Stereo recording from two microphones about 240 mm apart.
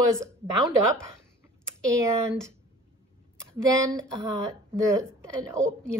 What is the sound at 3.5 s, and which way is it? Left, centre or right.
A woman's voice, centre.